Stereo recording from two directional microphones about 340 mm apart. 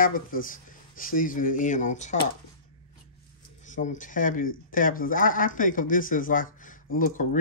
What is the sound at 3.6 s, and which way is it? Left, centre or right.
Speech, left.